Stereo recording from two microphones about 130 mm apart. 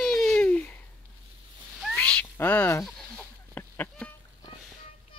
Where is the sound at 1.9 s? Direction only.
10° left (ahead or behind).